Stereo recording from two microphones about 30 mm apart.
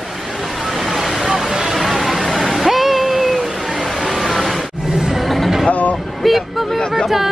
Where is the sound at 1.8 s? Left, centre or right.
Centre.